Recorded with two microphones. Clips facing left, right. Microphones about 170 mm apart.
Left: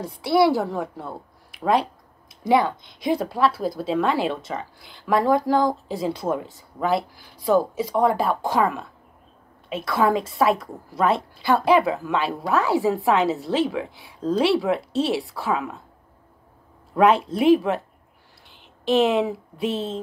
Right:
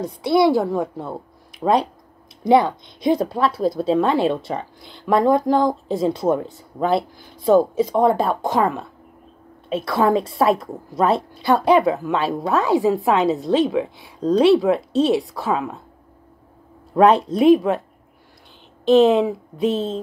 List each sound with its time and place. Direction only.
0.0 s a woman's voice: 20° right (ahead or behind)
2.4 s a woman's voice: 25° right (ahead or behind)
9.8 s a woman's voice: 25° right (ahead or behind)
16.9 s a woman's voice: 25° right (ahead or behind)
18.9 s a woman's voice: 20° right (ahead or behind)